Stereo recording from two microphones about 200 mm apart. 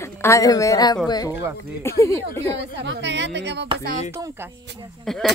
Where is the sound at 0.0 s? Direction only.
15° left (ahead or behind).